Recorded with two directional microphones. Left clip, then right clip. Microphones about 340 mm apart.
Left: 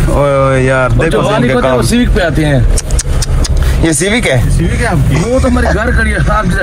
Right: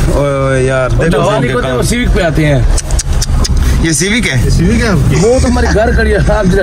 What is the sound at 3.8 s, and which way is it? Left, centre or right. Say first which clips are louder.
Speech: left 1 dB; centre.